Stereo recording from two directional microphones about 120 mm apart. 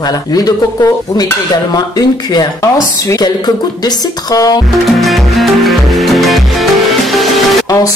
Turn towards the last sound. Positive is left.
turn(degrees=30)  # may be behind; listen again after turning